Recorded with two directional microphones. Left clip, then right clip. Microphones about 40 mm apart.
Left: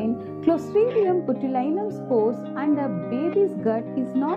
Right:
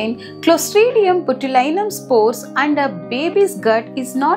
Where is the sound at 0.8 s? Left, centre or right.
Right.